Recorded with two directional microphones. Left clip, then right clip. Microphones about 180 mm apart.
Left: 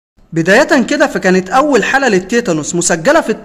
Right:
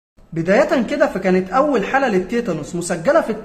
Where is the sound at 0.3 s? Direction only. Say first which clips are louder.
Left 6 dB; 30° left (ahead or behind).